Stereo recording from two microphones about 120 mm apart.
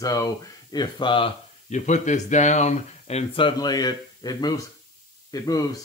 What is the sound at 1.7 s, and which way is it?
Speech, 85° left.